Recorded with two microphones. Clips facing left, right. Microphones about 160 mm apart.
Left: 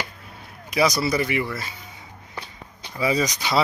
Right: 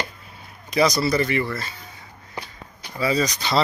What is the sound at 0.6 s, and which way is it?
Speech, 10° left (ahead or behind).